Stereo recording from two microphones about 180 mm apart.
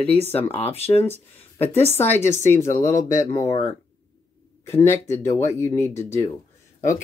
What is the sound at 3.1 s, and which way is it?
Speech, 45° left (ahead or behind).